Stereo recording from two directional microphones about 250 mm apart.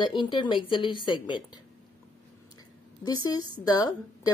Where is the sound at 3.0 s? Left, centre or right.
Centre.